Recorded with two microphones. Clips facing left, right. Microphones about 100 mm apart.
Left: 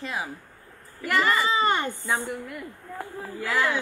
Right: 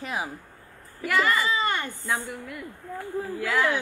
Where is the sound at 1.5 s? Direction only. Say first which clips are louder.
Left 3 dB; 25° left (ahead or behind).